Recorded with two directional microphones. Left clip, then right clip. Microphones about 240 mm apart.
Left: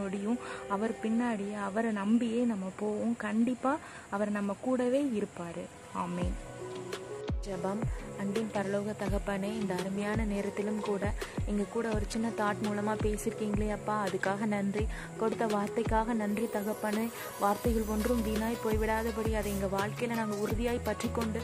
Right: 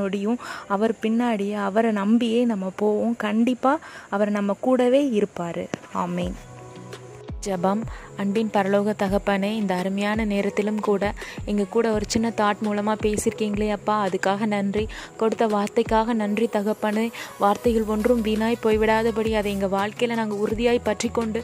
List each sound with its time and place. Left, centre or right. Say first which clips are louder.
0.0 s a woman's voice: right 10 dB; right
8.2 s a woman's voice: right 11 dB; right